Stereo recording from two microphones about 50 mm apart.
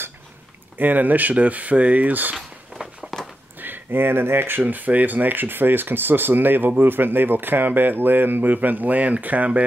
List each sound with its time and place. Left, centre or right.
0.7 s speech: right
3.0 s a sound: centre
3.5 s speech: right